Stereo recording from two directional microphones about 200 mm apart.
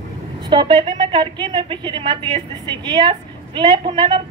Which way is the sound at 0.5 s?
25° right (ahead or behind).